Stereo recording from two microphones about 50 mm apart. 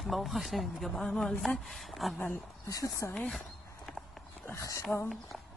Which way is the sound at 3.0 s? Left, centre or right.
Left.